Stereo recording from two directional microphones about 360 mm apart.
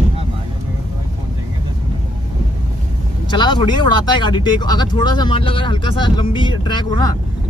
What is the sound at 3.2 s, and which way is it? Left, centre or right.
Speech, centre.